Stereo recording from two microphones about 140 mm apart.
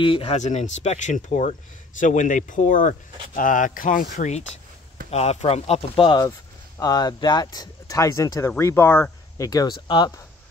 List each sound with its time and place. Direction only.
0.0 s speech: 40° left (ahead or behind)
0.4 s speech: 55° left (ahead or behind); by 6.2 s 40° left (ahead or behind)
6.8 s speech: 30° left (ahead or behind)
9.5 s speech: 30° left (ahead or behind)